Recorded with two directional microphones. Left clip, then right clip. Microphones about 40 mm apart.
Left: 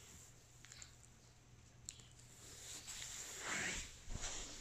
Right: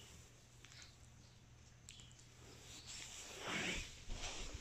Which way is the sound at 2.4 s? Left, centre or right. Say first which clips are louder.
Left 3 dB; right.